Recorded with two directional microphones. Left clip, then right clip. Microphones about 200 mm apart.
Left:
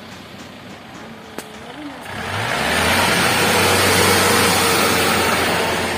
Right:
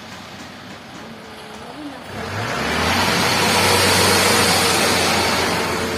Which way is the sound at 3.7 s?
40° left (ahead or behind).